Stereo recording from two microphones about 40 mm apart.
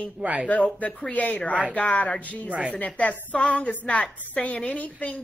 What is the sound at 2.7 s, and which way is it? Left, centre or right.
A woman's voice, left.